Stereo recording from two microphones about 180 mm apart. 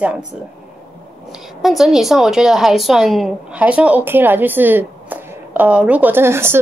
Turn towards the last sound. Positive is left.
turn(degrees=-15)  # may be behind; listen again after turning